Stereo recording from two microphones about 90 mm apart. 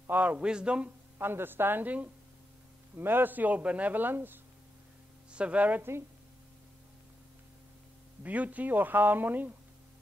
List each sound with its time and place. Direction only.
0.0 s a man's voice: 20° right (ahead or behind)
1.1 s a man's voice: 25° right (ahead or behind)
8.2 s a man's voice: 15° right (ahead or behind)